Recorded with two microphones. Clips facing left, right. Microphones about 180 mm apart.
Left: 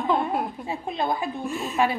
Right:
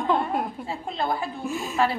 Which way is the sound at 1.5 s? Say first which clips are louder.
Even; centre (ahead or behind).